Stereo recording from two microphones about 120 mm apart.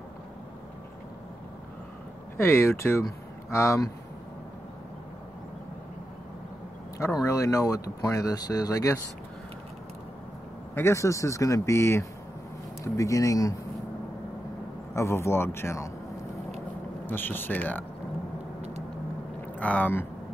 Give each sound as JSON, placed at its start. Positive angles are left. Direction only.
{"t": 2.3, "sound": "speech", "side_deg": 20}
{"t": 7.2, "sound": "speech", "side_deg": 30}
{"t": 10.7, "sound": "speech", "side_deg": 20}
{"t": 15.0, "sound": "speech", "side_deg": 25}
{"t": 17.0, "sound": "speech", "side_deg": 15}
{"t": 19.6, "sound": "speech", "side_deg": 15}